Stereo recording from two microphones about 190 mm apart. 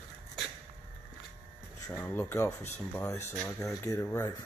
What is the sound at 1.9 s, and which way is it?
Speech, 10° left (ahead or behind).